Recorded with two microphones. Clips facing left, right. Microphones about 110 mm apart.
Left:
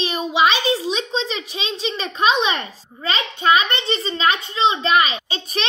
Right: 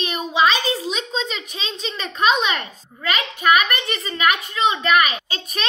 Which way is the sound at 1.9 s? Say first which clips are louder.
Even; 25° left (ahead or behind).